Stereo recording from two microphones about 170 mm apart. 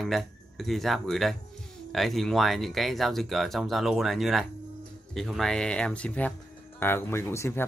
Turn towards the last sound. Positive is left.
turn(degrees=15)  # may be behind; listen again after turning